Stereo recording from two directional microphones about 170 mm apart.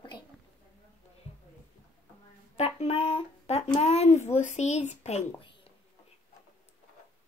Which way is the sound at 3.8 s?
40° left (ahead or behind).